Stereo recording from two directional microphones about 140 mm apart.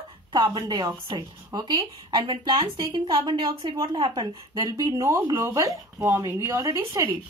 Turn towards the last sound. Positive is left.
turn(degrees=-20)  # may be behind; listen again after turning